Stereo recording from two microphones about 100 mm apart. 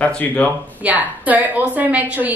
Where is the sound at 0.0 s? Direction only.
15° left (ahead or behind).